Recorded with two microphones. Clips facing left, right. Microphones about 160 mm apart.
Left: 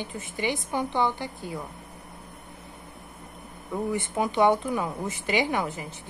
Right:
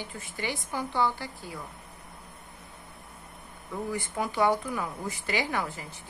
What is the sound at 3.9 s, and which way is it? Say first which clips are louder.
A woman's voice: left 4 dB; 20° left (ahead or behind).